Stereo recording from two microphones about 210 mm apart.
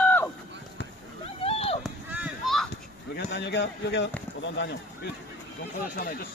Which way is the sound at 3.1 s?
50° left (ahead or behind).